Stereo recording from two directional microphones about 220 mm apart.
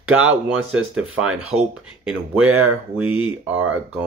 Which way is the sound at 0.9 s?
5° right (ahead or behind).